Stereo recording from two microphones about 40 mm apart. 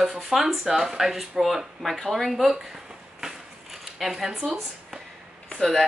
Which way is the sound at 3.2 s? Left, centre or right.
Centre.